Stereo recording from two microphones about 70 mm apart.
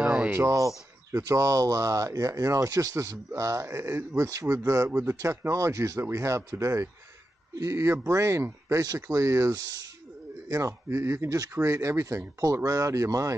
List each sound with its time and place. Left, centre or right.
0.0 s a sound: centre
0.4 s speech: right
2.7 s speech: right
3.3 s speech: right
8.8 s speech: right
9.6 s speech: right
10.5 s speech: right
11.5 s speech: right